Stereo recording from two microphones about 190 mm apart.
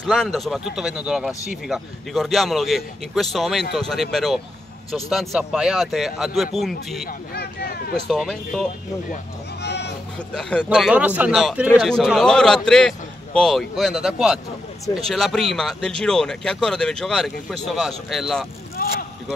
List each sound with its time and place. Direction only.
0.0 s speech: 5° left (ahead or behind)
7.1 s speech: 55° left (ahead or behind)
7.9 s speech: centre (ahead or behind)
9.6 s a sound: 60° left (ahead or behind)
10.1 s speech: 5° left (ahead or behind)
18.8 s a sound: 55° left (ahead or behind)